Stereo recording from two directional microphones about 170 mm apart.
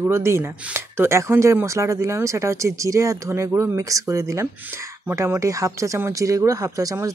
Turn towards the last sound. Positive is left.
turn(degrees=-20)  # may be behind; listen again after turning